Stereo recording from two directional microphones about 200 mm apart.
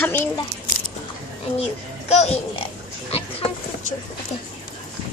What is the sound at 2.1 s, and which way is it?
Oink, 30° left (ahead or behind).